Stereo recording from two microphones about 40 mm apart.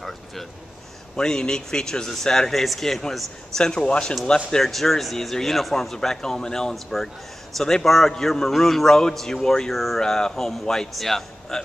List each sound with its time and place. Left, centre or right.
1.1 s a man's voice: centre
3.5 s speech: centre
4.5 s a man's voice: centre
9.7 s speech: centre
9.9 s a man's voice: centre